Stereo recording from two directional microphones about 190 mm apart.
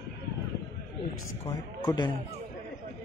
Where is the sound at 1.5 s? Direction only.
20° left (ahead or behind).